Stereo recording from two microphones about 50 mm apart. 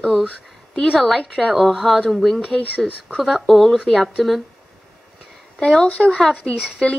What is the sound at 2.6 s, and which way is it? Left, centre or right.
Speech, left.